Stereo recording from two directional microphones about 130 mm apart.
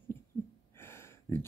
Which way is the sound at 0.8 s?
20° left (ahead or behind).